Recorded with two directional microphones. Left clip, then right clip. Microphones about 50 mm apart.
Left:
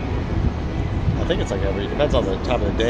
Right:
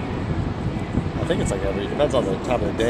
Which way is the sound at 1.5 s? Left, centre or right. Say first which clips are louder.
Even; centre.